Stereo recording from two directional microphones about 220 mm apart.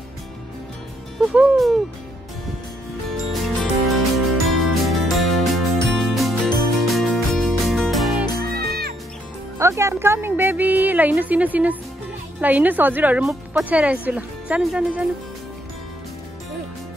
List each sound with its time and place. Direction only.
1.3 s speech: centre (ahead or behind)
3.3 s music: centre (ahead or behind)
8.5 s music: 45° right (ahead or behind)
9.6 s a woman's voice: 15° right (ahead or behind)